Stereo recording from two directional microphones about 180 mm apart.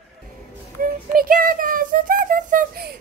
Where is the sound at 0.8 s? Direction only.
55° right (ahead or behind).